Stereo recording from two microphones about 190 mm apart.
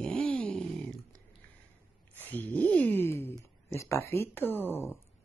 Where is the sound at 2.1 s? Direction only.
10° left (ahead or behind).